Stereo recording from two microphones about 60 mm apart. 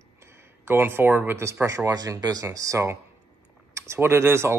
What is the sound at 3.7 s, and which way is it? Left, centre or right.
Speech, right.